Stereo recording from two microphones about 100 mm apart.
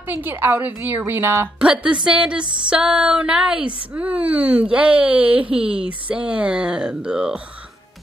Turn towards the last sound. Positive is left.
turn(degrees=-10)  # may be behind; listen again after turning